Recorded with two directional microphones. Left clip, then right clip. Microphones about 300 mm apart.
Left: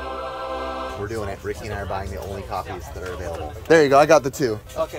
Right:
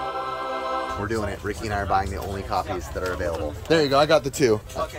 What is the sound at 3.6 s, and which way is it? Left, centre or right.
Speech, centre.